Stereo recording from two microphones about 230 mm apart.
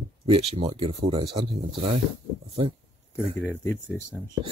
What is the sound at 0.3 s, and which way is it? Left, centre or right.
Speech, right.